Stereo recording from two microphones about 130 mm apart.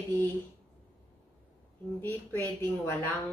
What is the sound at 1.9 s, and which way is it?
Speech, 20° left (ahead or behind).